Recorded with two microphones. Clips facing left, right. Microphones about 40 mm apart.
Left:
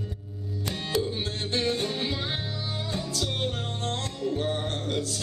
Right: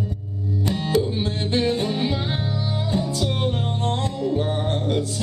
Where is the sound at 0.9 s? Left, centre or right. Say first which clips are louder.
Right 5 dB; centre.